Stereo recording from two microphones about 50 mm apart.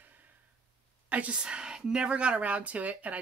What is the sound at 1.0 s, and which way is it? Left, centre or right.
Speech, right.